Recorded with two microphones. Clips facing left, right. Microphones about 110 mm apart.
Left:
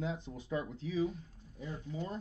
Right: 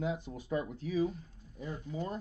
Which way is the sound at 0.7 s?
50° right (ahead or behind).